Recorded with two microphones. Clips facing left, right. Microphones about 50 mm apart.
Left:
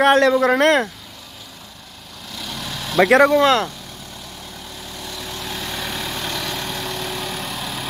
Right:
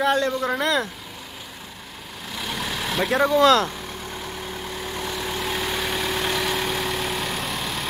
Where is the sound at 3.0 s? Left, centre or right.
Left.